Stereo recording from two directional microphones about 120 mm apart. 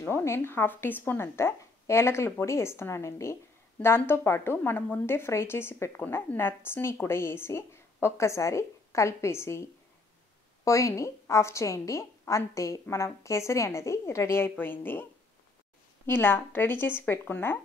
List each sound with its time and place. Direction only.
0.0 s a woman's voice: 20° left (ahead or behind)
10.6 s a woman's voice: 25° left (ahead or behind)
16.1 s a woman's voice: 15° left (ahead or behind)